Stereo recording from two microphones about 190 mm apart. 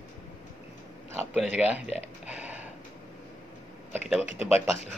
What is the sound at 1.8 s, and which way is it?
Speech, 35° left (ahead or behind).